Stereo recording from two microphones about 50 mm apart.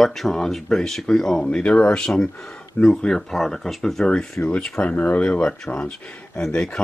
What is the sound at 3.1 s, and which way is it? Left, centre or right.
Speech, centre.